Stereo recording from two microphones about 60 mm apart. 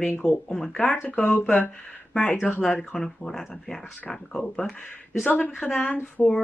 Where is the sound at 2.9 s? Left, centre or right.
Centre.